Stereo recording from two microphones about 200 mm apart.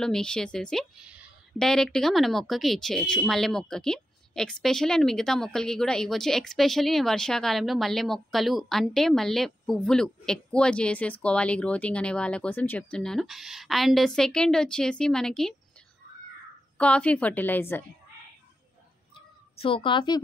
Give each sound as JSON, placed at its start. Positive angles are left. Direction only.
{"t": 0.0, "sound": "a woman's voice", "side_deg": 5}
{"t": 16.7, "sound": "a woman's voice", "side_deg": 5}
{"t": 19.1, "sound": "a sound", "side_deg": 25}